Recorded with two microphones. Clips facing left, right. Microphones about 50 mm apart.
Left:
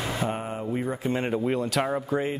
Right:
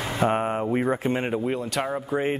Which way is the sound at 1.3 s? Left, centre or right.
Centre.